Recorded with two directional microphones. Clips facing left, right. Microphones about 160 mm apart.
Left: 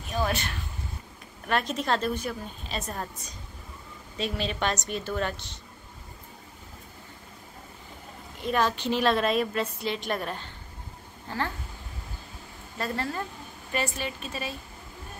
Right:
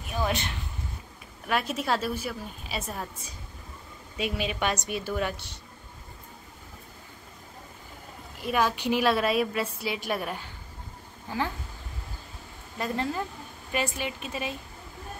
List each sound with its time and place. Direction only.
0.1 s a woman's voice: 15° right (ahead or behind)
1.5 s a woman's voice: 5° right (ahead or behind)
8.4 s a woman's voice: 10° right (ahead or behind)
12.7 s a woman's voice: 15° right (ahead or behind)